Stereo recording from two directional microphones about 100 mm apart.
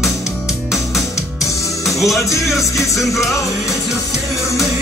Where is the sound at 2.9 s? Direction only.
30° left (ahead or behind).